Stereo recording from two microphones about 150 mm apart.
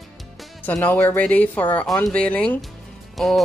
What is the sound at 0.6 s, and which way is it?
Speech, 10° left (ahead or behind).